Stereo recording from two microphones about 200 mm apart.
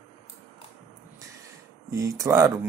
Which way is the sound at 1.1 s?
15° right (ahead or behind).